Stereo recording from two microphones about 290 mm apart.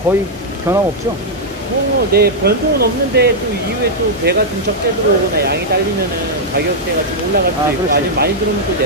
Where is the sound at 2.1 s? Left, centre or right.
Right.